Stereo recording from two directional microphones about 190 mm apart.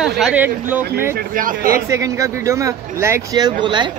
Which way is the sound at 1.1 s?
45° right (ahead or behind).